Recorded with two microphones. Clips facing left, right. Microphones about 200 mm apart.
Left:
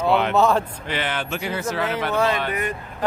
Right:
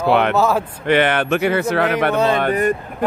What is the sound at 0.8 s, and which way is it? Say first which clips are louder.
Speech: right 11 dB; 60° right (ahead or behind).